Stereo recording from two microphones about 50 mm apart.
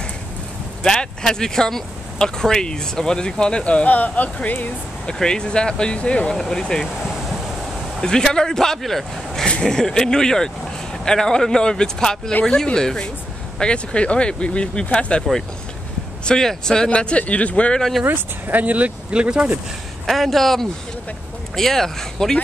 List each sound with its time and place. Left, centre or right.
0.8 s speech: centre
3.8 s speech: left
5.0 s speech: centre
6.3 s speech: centre
8.0 s speech: centre
16.3 s speech: centre
17.7 s speech: centre
18.0 s speech: right
20.1 s speech: centre